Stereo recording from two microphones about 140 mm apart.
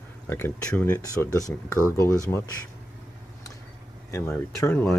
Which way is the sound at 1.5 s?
15° left (ahead or behind).